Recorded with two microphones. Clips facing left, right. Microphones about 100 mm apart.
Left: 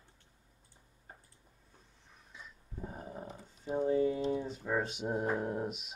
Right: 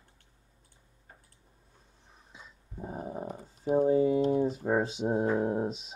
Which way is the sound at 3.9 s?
25° right (ahead or behind).